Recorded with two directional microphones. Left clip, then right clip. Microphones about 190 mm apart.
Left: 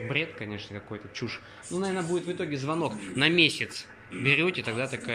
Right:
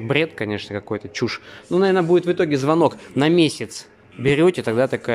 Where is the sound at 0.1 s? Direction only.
45° right (ahead or behind).